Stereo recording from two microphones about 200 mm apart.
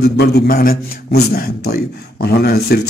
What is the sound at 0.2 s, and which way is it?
A man's voice, 50° left (ahead or behind).